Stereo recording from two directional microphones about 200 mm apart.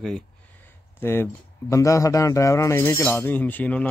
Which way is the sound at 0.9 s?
10° left (ahead or behind).